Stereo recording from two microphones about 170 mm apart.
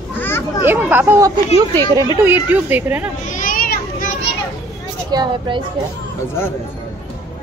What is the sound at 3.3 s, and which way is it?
Children playing, 50° left (ahead or behind).